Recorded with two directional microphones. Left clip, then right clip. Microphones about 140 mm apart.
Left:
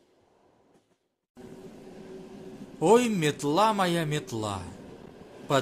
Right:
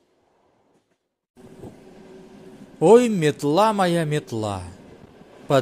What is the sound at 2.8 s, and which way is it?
Speech, 30° right (ahead or behind).